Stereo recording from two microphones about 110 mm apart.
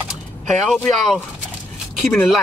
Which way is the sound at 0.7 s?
5° left (ahead or behind).